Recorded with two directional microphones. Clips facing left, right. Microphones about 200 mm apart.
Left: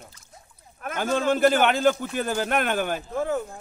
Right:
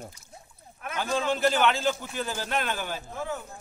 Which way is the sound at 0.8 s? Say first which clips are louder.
Left 4 dB; 45° left (ahead or behind).